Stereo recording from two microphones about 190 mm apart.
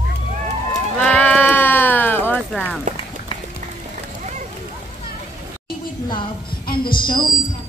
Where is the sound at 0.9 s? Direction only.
5° left (ahead or behind).